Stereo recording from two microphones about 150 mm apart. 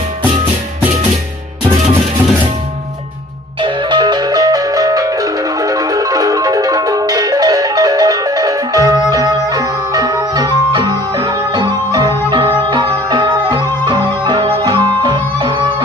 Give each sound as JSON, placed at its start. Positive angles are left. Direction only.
{"t": 3.6, "sound": "music", "side_deg": -30}